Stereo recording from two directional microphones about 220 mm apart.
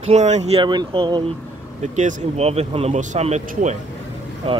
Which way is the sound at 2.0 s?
30° right (ahead or behind).